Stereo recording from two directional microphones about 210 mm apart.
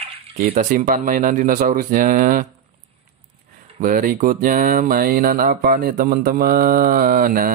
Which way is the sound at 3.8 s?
40° right (ahead or behind).